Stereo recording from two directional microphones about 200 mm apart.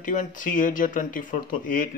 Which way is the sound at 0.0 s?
40° left (ahead or behind).